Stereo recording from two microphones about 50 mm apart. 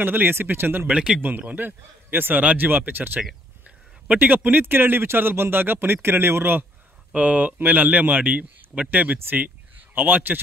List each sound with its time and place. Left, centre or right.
0.0 s speech: right
4.2 s speech: right
7.2 s speech: right